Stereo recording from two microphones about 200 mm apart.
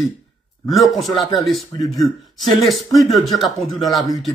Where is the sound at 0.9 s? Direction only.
Centre (ahead or behind).